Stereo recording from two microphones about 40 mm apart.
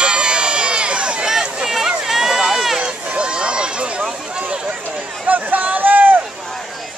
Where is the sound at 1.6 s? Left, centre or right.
Centre.